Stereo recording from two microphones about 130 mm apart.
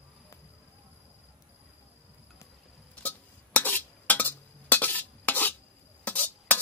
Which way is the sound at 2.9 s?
15° left (ahead or behind).